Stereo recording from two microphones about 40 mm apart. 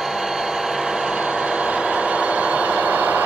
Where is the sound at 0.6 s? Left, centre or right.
Centre.